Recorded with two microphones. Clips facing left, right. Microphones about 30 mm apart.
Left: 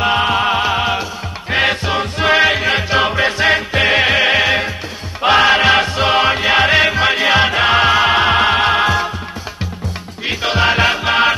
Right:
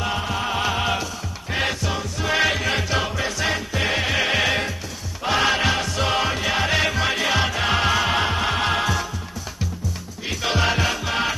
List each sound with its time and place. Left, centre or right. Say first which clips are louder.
0.0 s music: left 10 dB; left
0.6 s music: left 6 dB; left
1.5 s music: left 9 dB; left
2.3 s music: left 6 dB; left
5.2 s music: left 9 dB; left
10.2 s music: left 7 dB; left